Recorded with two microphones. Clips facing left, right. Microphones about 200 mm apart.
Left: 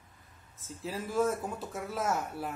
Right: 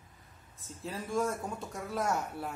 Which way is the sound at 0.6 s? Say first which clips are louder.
Left 2 dB; centre (ahead or behind).